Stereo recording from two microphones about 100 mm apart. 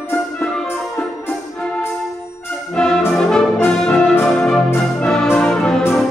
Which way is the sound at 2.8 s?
5° left (ahead or behind).